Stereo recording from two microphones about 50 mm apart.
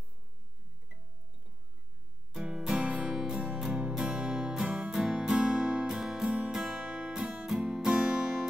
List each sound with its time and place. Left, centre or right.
2.4 s music: centre
3.2 s music: centre